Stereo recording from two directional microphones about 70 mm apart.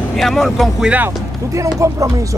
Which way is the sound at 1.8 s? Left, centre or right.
Right.